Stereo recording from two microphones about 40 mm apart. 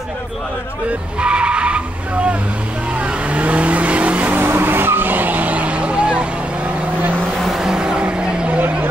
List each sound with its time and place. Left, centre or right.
1.2 s skidding: right
3.3 s vehicle: right
4.4 s vehicle: right
7.6 s vehicle: right